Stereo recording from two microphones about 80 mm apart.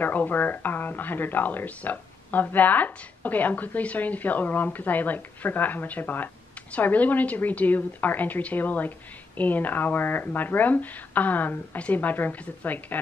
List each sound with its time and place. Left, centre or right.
0.0 s speech: left